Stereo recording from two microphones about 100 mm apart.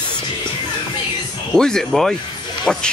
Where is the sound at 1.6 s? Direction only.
5° left (ahead or behind).